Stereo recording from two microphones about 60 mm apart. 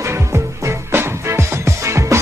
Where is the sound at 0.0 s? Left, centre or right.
Right.